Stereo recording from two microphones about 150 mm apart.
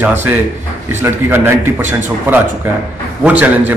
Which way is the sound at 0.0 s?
15° right (ahead or behind).